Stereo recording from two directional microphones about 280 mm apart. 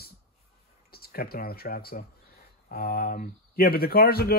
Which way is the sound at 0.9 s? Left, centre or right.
Left.